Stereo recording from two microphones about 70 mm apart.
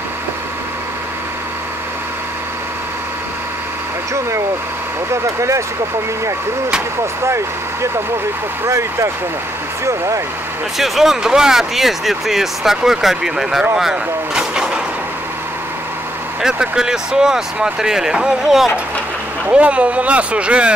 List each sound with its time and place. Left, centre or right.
5.1 s speech: right
7.2 s speech: right
10.8 s speech: centre
16.4 s speech: centre
19.5 s speech: centre